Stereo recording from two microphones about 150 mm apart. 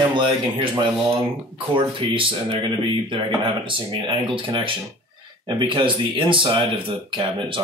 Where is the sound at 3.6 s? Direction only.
35° right (ahead or behind).